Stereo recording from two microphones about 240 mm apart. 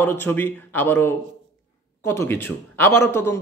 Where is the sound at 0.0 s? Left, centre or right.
Centre.